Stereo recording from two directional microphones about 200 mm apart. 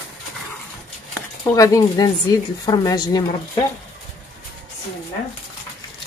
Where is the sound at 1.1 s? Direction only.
15° left (ahead or behind).